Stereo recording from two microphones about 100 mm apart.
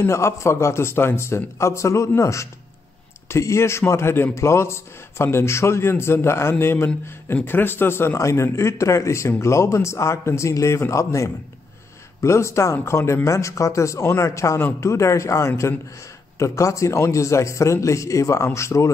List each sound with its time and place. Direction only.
0.0 s a man's voice: 30° left (ahead or behind)